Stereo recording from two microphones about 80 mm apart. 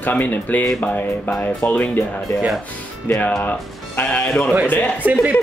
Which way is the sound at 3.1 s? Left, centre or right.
Left.